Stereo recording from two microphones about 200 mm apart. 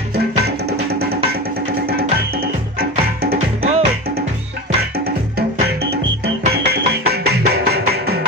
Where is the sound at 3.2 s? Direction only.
50° right (ahead or behind).